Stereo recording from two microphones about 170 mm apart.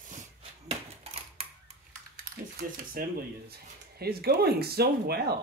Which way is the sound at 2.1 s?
60° right (ahead or behind).